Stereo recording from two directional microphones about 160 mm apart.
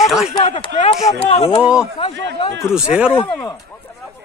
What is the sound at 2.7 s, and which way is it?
Speech, 5° right (ahead or behind).